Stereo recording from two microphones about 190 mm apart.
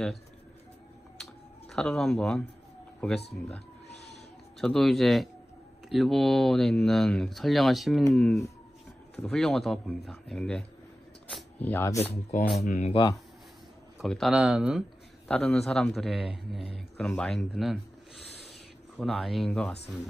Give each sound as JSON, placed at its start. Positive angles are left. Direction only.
{"t": 1.2, "sound": "computer keyboard", "side_deg": 0}
{"t": 4.6, "sound": "a man's voice", "side_deg": 0}
{"t": 11.2, "sound": "a sound", "side_deg": 5}
{"t": 12.5, "sound": "speech", "side_deg": 40}
{"t": 13.9, "sound": "a man's voice", "side_deg": 0}
{"t": 18.9, "sound": "a man's voice", "side_deg": 0}